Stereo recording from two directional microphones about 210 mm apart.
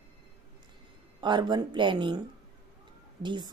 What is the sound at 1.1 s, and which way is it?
Speech, 20° right (ahead or behind).